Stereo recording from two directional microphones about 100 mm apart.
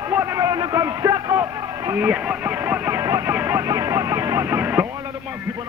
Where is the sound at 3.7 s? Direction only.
35° right (ahead or behind).